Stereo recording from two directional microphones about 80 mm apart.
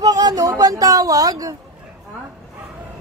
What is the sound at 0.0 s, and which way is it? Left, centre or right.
Speech, right.